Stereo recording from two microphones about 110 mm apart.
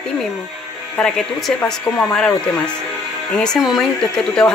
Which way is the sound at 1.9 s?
5° left (ahead or behind).